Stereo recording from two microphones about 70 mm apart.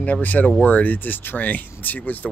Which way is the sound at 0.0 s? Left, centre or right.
Left.